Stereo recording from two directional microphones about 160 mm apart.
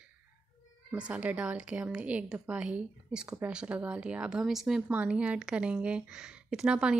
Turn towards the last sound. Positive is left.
turn(degrees=-5)  # may be behind; listen again after turning